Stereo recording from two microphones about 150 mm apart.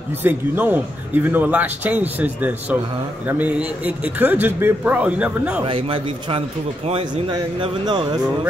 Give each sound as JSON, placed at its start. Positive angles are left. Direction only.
{"t": 0.2, "sound": "speech", "side_deg": -15}
{"t": 5.7, "sound": "speech", "side_deg": -40}